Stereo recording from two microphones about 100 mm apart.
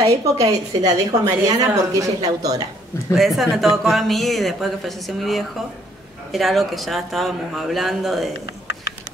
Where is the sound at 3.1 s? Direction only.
Centre (ahead or behind).